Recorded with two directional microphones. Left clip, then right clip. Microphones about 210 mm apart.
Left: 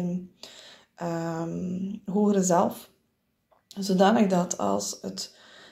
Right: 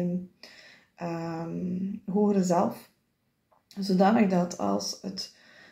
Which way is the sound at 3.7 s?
25° left (ahead or behind).